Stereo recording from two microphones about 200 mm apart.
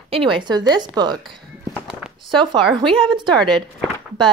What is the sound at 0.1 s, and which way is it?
Speech, 25° right (ahead or behind).